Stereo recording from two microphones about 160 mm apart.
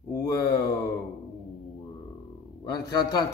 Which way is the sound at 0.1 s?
20° left (ahead or behind).